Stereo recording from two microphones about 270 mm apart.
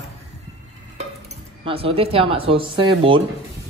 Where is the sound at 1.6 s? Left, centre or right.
Right.